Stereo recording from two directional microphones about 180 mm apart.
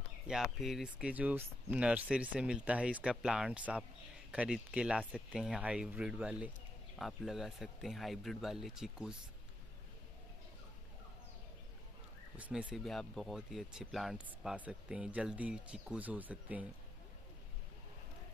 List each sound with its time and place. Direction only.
0.3 s speech: centre (ahead or behind)
12.4 s speech: 5° right (ahead or behind)